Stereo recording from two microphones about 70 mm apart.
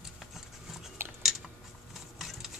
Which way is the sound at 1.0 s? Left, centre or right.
Right.